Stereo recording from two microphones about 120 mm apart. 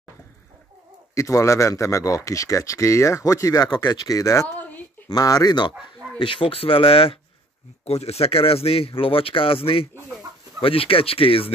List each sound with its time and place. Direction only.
1.1 s speech: 25° left (ahead or behind)
4.6 s a sound: 15° left (ahead or behind)
5.1 s speech: 30° left (ahead or behind)
5.8 s speech: 45° left (ahead or behind)
7.8 s speech: 60° left (ahead or behind)